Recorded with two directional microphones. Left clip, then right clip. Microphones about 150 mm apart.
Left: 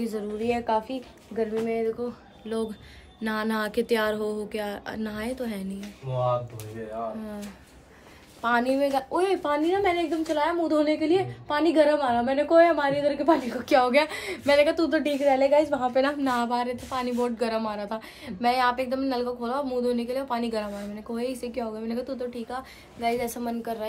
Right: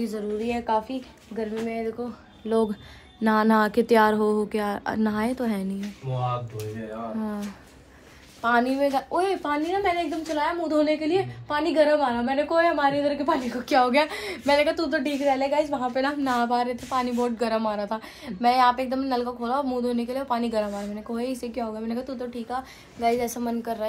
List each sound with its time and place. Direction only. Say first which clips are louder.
0.0 s a woman's voice: right 1 dB; 15° left (ahead or behind)
3.2 s speech: right 7 dB; 35° right (ahead or behind)
6.1 s a woman's voice: left 3 dB; 15° left (ahead or behind)
8.4 s a woman's voice: right 1 dB; 20° left (ahead or behind)